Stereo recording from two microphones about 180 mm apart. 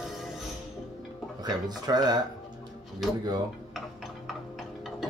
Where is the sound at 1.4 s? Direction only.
20° right (ahead or behind).